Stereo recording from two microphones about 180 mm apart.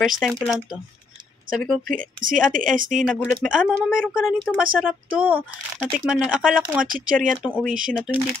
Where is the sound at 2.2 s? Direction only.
50° right (ahead or behind).